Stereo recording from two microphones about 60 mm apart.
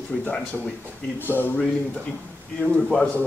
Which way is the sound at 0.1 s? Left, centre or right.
Centre.